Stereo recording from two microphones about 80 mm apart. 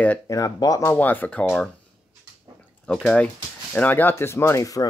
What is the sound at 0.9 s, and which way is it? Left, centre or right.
Speech, left.